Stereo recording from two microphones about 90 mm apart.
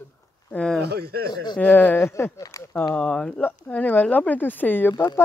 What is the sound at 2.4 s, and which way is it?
Speech, 40° left (ahead or behind).